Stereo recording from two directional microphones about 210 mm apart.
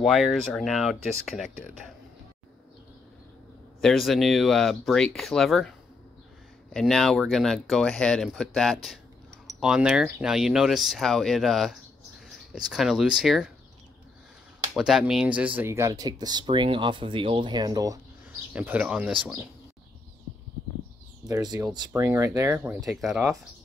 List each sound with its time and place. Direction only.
0.0 s speech: centre (ahead or behind)
3.8 s speech: centre (ahead or behind)
6.7 s speech: 5° left (ahead or behind)
14.7 s speech: centre (ahead or behind); by 17.9 s 20° right (ahead or behind)
18.5 s speech: 10° right (ahead or behind)
21.3 s speech: 20° right (ahead or behind); by 23.3 s centre (ahead or behind)